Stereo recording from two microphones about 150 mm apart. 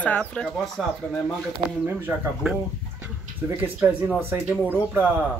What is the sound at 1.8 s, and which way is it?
Speech, 15° right (ahead or behind).